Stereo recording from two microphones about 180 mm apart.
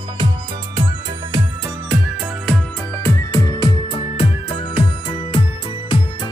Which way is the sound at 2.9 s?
10° left (ahead or behind).